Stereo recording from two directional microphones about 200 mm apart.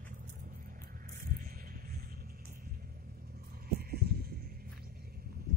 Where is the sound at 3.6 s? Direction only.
50° right (ahead or behind).